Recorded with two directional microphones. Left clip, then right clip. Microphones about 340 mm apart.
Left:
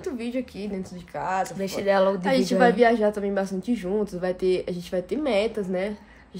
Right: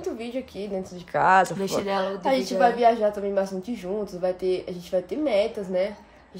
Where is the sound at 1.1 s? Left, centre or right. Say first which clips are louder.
Right 8 dB; right.